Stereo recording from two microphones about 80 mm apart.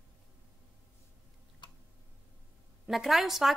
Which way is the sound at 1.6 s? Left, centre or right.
Left.